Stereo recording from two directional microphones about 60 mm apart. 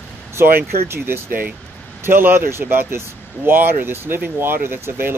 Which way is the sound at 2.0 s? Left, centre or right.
Right.